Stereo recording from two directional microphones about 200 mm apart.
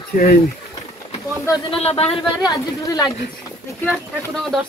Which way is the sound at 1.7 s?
30° left (ahead or behind).